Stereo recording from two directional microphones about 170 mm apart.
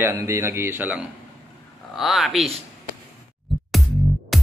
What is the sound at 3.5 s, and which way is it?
Music, centre (ahead or behind).